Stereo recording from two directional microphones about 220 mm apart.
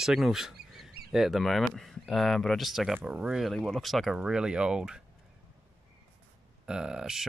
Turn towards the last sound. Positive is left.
turn(degrees=0)  # may be behind; listen again after turning